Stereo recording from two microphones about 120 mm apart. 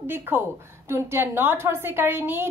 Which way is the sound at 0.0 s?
20° right (ahead or behind).